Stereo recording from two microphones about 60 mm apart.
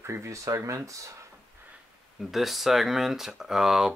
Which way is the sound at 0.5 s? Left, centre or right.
Right.